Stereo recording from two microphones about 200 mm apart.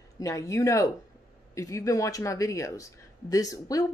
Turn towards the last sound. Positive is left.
turn(degrees=15)  # may be behind; listen again after turning